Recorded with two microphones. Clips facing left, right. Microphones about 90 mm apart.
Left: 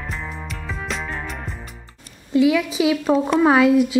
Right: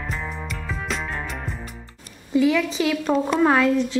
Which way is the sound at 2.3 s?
5° left (ahead or behind).